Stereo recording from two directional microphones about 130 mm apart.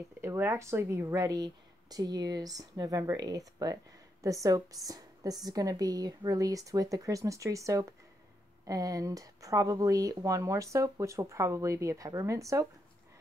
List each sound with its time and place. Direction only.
0.2 s speech: 20° right (ahead or behind)